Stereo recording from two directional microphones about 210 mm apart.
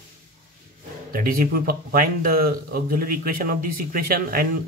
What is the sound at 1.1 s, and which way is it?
Speech, 40° right (ahead or behind).